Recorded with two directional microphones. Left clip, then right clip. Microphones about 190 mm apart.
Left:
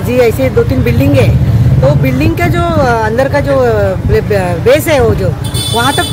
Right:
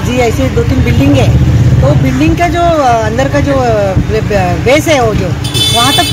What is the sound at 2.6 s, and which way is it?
Speech, 25° left (ahead or behind).